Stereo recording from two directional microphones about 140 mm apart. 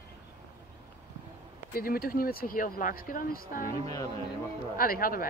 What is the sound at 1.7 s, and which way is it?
Speech, 90° left.